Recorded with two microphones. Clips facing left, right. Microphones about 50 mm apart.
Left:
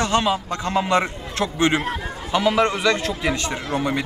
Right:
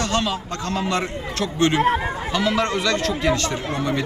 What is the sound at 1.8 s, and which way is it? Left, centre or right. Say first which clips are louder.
Speech: right 7 dB; right.